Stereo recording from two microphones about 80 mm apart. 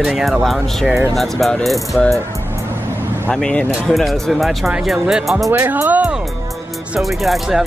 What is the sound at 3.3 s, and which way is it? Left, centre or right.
Speech, centre.